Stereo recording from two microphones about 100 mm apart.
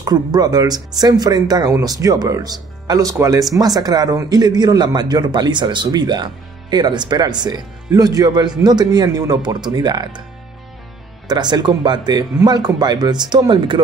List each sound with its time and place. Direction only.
0.0 s speech: 40° right (ahead or behind)
11.2 s speech: 45° right (ahead or behind)